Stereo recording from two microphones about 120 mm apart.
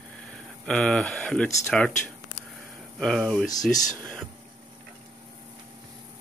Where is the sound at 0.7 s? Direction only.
10° left (ahead or behind).